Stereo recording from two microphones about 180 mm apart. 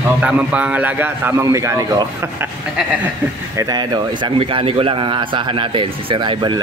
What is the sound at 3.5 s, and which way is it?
A man's voice, 20° right (ahead or behind).